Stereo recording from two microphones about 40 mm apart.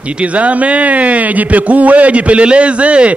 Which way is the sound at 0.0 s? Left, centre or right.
Right.